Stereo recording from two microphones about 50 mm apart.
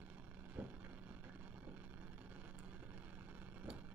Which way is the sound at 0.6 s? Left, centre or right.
Right.